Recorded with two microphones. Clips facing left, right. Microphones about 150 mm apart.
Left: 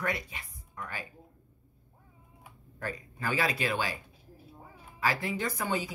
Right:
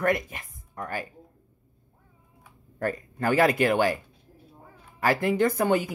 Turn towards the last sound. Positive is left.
turn(degrees=-55)  # may be behind; listen again after turning